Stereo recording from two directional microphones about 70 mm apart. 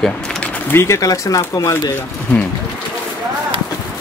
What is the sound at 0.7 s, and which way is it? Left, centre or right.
Speech, left.